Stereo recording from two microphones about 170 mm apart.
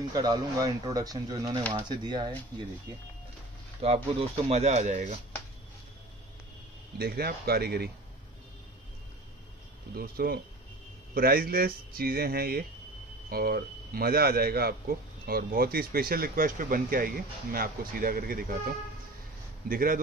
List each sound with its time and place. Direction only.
0.1 s speech: 25° right (ahead or behind)
3.8 s speech: 35° right (ahead or behind)
7.0 s speech: 65° right (ahead or behind)
9.9 s speech: 60° right (ahead or behind)